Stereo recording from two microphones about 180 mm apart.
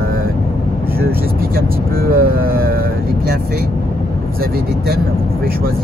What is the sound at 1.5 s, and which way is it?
Speech, 55° right (ahead or behind).